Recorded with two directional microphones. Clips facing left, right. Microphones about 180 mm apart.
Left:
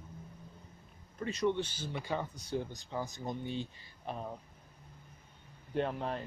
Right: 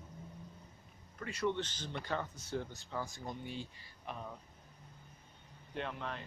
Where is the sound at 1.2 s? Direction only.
20° left (ahead or behind).